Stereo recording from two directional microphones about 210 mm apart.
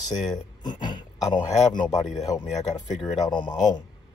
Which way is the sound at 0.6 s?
20° left (ahead or behind).